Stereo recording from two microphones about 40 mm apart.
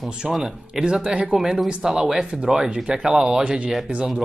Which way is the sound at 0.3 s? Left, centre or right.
Centre.